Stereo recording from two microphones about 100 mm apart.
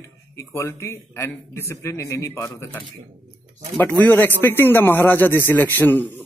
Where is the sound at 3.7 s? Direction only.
20° left (ahead or behind).